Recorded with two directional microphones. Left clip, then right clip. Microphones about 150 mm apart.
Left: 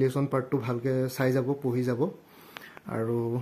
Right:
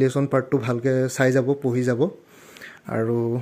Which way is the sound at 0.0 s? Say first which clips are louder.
Right 6 dB; 20° right (ahead or behind).